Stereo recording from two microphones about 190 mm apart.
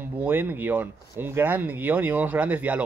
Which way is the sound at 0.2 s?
10° right (ahead or behind).